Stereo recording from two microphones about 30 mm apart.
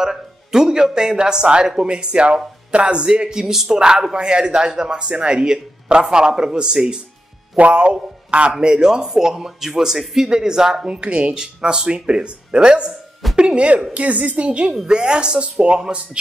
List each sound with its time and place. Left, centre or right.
0.0 s speech: centre; by 8.5 s right
8.5 s speech: right
10.9 s speech: right
11.3 s a woman's voice: right
13.9 s a woman's voice: right
14.9 s speech: right